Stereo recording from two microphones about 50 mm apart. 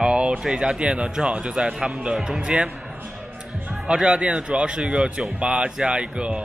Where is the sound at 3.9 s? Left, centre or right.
Right.